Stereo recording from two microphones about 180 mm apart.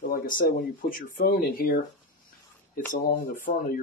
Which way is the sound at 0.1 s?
55° left (ahead or behind).